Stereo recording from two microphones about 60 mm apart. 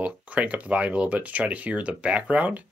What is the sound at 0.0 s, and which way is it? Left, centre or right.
Speech, right.